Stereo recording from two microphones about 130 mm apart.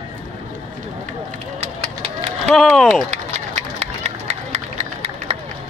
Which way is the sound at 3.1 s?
60° right (ahead or behind).